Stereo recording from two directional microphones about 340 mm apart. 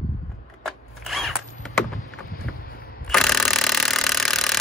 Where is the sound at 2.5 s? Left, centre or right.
Left.